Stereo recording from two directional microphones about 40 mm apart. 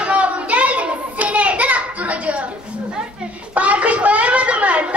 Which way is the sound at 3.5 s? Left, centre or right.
Right.